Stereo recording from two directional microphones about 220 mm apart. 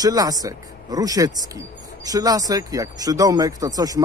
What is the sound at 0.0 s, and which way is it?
A man's voice, 15° right (ahead or behind).